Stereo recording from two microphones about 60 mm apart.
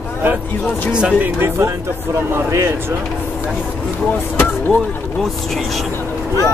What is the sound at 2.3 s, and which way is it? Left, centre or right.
Speech, right.